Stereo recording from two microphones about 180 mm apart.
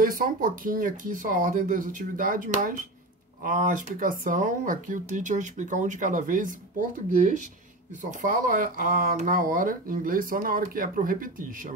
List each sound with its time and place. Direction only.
0.0 s speech: 50° right (ahead or behind)